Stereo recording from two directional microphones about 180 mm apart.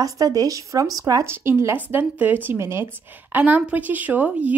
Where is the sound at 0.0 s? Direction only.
20° right (ahead or behind).